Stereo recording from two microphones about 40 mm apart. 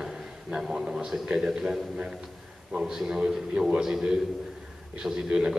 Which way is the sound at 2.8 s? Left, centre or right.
Centre.